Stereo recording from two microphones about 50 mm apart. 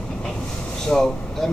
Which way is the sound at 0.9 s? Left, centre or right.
Centre.